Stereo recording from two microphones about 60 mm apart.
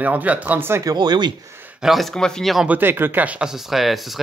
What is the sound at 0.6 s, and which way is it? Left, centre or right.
Speech, right.